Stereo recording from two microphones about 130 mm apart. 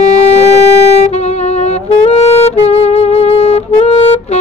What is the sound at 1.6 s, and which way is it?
Saxophone, 55° left (ahead or behind).